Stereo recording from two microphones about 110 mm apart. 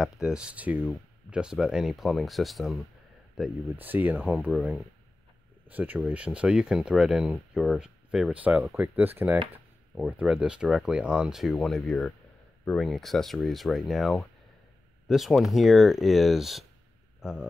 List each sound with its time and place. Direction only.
0.0 s speech: 5° right (ahead or behind)
3.3 s speech: 10° right (ahead or behind)